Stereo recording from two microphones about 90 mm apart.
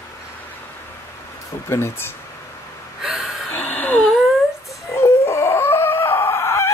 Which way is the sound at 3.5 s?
20° left (ahead or behind).